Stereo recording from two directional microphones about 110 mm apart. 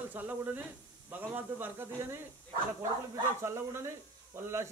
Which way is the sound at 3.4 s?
25° right (ahead or behind).